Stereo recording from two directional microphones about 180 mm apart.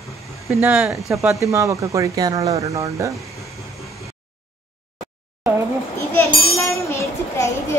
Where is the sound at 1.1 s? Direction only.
15° right (ahead or behind).